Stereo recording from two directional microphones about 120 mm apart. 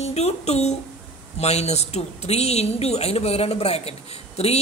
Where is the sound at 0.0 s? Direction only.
65° left (ahead or behind).